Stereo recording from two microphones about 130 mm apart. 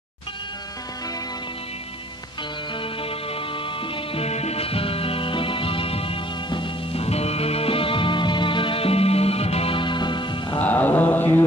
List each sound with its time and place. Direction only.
2.8 s music: 45° left (ahead or behind)
10.6 s mantra: 15° left (ahead or behind)